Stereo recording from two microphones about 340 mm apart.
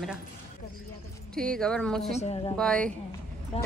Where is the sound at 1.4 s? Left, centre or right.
Centre.